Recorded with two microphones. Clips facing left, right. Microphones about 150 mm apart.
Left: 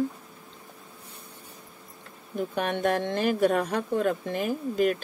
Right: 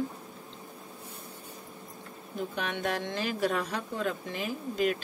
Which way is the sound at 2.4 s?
50° left (ahead or behind).